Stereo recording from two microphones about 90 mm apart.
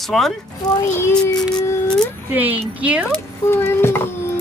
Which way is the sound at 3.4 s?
25° left (ahead or behind).